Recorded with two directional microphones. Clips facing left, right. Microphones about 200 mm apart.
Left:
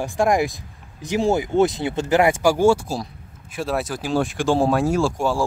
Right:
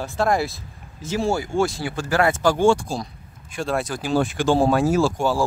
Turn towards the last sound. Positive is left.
turn(degrees=0)  # may be behind; listen again after turning